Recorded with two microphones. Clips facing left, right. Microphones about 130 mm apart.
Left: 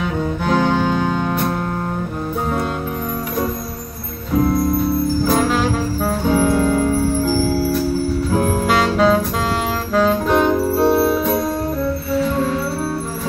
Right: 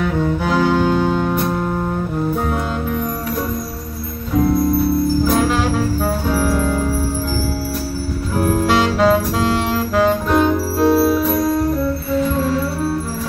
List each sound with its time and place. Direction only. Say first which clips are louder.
0.5 s music: even; 5° right (ahead or behind)
5.3 s music: even; centre (ahead or behind)
6.2 s music: left 5 dB; 20° left (ahead or behind)
8.6 s music: right 1 dB; centre (ahead or behind)